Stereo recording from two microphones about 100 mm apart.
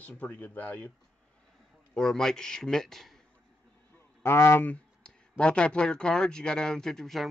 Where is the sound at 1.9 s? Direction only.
5° left (ahead or behind).